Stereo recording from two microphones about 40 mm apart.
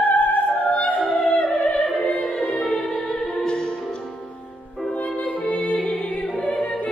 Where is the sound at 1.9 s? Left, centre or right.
Left.